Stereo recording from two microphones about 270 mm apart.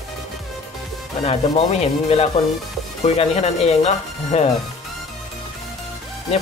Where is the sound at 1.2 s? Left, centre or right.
Left.